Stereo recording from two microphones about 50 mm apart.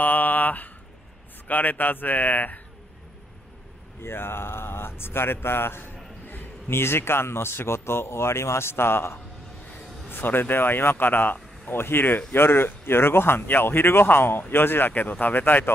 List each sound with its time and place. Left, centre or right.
0.0 s a sound: left
1.5 s speech: left
4.0 s speech: left